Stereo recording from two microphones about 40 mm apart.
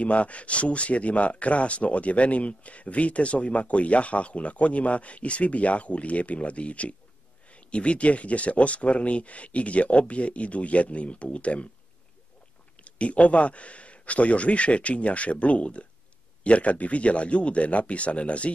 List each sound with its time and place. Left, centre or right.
0.0 s speech: left
12.7 s speech: left